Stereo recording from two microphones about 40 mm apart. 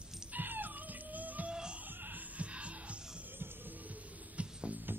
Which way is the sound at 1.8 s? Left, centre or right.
Right.